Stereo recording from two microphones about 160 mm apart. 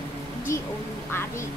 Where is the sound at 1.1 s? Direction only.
15° left (ahead or behind).